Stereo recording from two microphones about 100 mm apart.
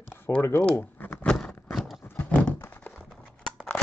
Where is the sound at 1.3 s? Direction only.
10° left (ahead or behind).